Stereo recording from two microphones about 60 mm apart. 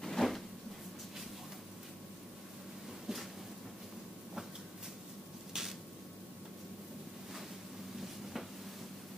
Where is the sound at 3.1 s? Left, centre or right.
Centre.